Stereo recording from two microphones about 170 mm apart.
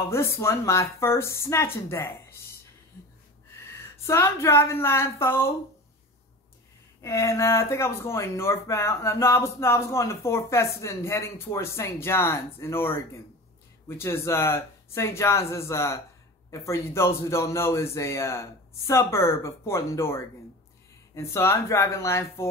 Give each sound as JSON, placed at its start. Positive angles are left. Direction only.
{"t": 0.1, "sound": "speech", "side_deg": 15}
{"t": 3.7, "sound": "speech", "side_deg": 15}
{"t": 7.0, "sound": "speech", "side_deg": 15}